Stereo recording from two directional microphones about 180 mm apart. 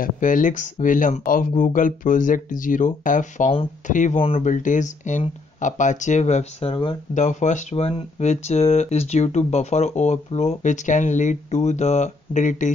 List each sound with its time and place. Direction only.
0.0 s speech: 45° left (ahead or behind); by 7.0 s 30° left (ahead or behind)
7.2 s speech: 45° left (ahead or behind)